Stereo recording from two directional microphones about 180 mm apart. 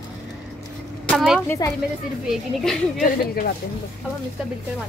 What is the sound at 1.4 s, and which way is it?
Speech, 15° left (ahead or behind).